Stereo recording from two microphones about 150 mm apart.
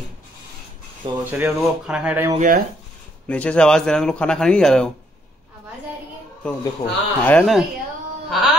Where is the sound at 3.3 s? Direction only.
10° left (ahead or behind).